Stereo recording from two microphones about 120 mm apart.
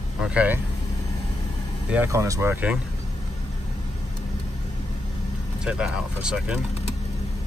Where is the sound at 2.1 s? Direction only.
25° right (ahead or behind).